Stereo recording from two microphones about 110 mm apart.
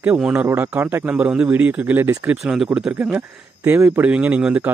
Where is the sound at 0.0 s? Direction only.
10° right (ahead or behind).